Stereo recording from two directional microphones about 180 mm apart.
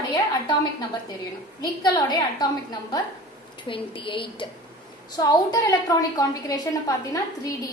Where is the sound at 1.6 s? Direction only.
20° left (ahead or behind).